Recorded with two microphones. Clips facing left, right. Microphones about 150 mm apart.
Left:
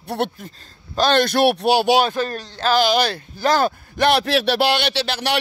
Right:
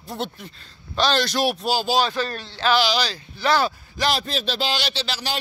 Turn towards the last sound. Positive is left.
turn(degrees=65)  # may be behind; listen again after turning